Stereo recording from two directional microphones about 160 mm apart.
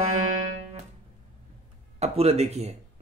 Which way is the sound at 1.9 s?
40° right (ahead or behind).